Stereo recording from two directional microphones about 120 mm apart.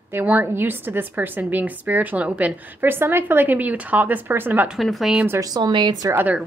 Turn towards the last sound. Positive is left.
turn(degrees=-15)  # may be behind; listen again after turning